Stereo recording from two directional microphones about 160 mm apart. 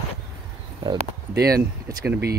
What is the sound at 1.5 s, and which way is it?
Speech, 25° right (ahead or behind).